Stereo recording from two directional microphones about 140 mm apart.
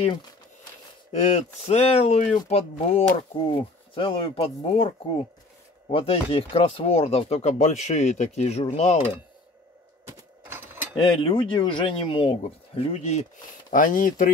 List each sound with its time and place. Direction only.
1.1 s speech: 55° left (ahead or behind)
10.0 s a sound: 15° right (ahead or behind)
11.1 s speech: 40° left (ahead or behind); by 14.3 s 80° left